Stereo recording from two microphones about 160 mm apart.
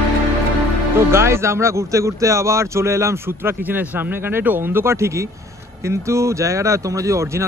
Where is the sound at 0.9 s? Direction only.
15° right (ahead or behind).